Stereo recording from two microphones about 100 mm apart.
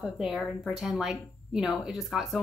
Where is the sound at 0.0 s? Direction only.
Centre (ahead or behind).